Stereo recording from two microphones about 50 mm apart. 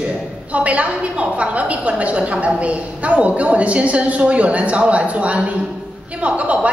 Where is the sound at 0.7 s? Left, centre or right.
Right.